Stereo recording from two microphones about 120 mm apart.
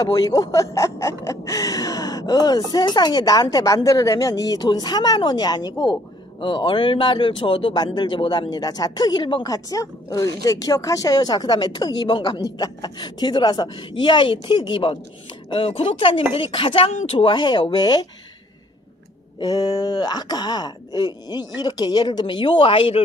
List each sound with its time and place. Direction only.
0.0 s speech: 30° left (ahead or behind)
6.4 s speech: 45° left (ahead or behind)
7.7 s speech: 35° left (ahead or behind)
19.4 s speech: 35° left (ahead or behind); by 23.0 s 50° left (ahead or behind)